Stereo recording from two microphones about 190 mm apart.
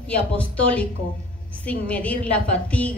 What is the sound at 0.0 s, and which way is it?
A woman's voice, 5° left (ahead or behind).